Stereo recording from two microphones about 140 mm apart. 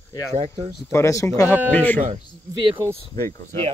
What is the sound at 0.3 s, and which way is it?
Speech, 45° right (ahead or behind).